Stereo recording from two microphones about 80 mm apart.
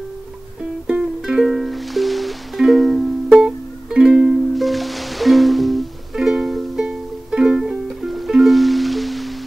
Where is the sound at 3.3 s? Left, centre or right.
Centre.